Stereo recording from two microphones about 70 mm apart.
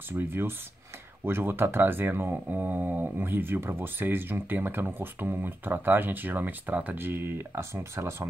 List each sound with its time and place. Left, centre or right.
0.1 s speech: right